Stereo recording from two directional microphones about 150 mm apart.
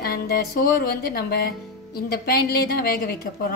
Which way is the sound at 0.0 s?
90° left.